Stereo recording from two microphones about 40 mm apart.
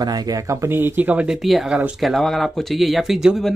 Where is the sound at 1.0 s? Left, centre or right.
Right.